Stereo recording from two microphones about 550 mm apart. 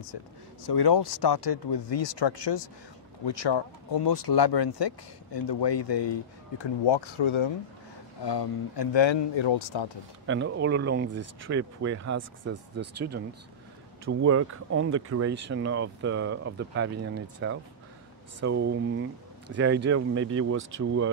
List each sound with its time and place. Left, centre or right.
0.1 s speech: left
10.2 s speech: centre